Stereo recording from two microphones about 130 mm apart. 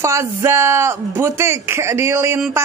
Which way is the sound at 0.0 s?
20° right (ahead or behind).